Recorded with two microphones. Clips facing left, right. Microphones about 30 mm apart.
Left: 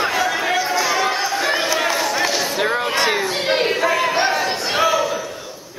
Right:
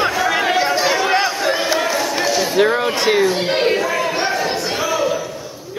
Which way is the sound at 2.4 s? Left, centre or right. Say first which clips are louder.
Right 4 dB; centre.